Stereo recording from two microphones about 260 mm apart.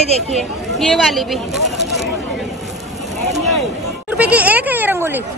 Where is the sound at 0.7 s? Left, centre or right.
Centre.